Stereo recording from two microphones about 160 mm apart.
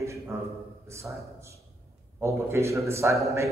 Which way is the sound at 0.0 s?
20° right (ahead or behind).